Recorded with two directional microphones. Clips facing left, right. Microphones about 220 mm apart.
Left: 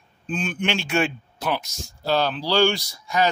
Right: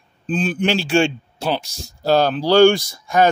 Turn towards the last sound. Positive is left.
turn(degrees=-50)  # may be behind; listen again after turning